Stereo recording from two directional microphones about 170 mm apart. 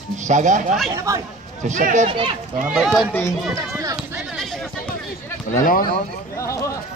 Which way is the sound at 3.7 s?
15° right (ahead or behind).